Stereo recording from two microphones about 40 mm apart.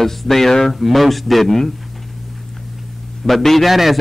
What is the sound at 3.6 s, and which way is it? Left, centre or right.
Speech, centre.